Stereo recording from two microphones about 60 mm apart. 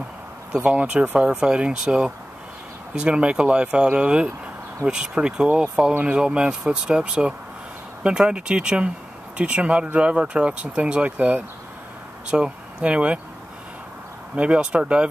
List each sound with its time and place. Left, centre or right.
0.7 s speech: right
14.3 s speech: centre